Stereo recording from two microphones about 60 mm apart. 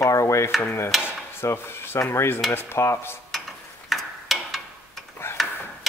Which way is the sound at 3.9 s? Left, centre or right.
Centre.